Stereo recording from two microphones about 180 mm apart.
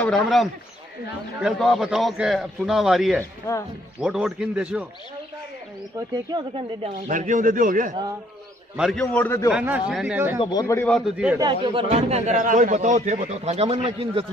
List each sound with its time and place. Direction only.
0.0 s a man's voice: centre (ahead or behind)
3.4 s a man's voice: 15° left (ahead or behind)
4.0 s a man's voice: 5° right (ahead or behind)
5.9 s speech: 25° right (ahead or behind)
7.1 s a man's voice: 45° right (ahead or behind)
8.7 s a man's voice: centre (ahead or behind)
9.0 s a man's voice: 15° left (ahead or behind)
9.5 s speech: 5° right (ahead or behind)
10.4 s a man's voice: 20° left (ahead or behind)
10.9 s a man's voice: centre (ahead or behind)
11.3 s speech: 25° right (ahead or behind)
11.9 s a man's voice: 40° right (ahead or behind)